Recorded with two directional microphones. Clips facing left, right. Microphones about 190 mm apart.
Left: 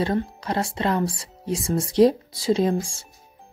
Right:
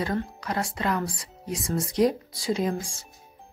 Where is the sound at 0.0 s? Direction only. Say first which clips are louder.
Left 4 dB; 25° left (ahead or behind).